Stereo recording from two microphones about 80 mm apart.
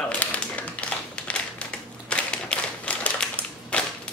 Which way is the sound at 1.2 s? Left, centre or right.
Centre.